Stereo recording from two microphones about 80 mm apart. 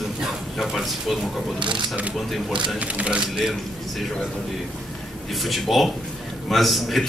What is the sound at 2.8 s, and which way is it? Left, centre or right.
Speech, centre.